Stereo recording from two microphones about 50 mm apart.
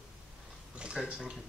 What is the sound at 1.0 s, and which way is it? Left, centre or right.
Speech, centre.